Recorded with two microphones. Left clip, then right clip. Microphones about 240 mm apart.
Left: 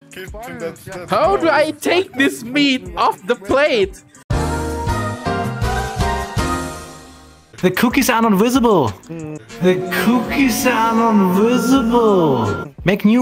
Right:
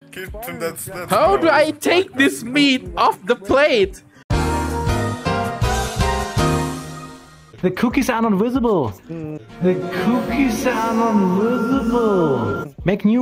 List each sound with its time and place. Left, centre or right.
0.5 s music: right
1.0 s a sound: centre
7.6 s speech: left
9.3 s music: left
11.5 s speech: left